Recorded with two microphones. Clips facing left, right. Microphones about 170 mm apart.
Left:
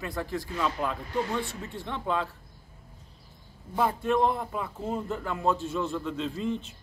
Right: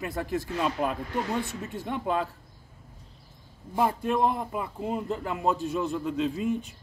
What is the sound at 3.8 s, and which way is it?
Speech, 10° right (ahead or behind).